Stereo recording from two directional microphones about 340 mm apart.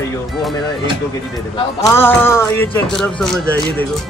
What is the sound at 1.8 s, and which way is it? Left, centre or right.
Speech, centre.